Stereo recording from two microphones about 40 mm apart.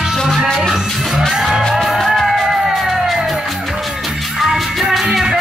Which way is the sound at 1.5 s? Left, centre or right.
Centre.